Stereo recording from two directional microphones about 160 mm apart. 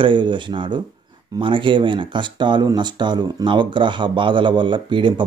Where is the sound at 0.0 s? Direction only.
30° right (ahead or behind).